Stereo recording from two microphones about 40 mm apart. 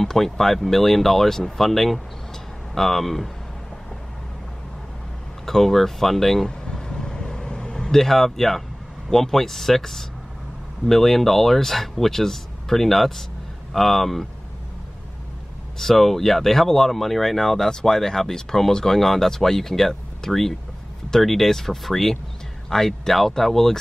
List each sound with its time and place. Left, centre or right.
0.0 s speech: centre
5.4 s speech: centre
6.6 s vehicle: centre
9.1 s speech: centre
15.8 s speech: centre